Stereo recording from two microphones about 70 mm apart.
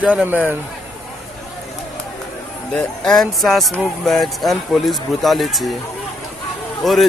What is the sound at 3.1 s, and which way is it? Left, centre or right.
Speech, centre.